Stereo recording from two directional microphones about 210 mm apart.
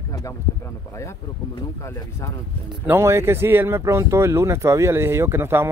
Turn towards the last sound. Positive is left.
turn(degrees=-10)  # may be behind; listen again after turning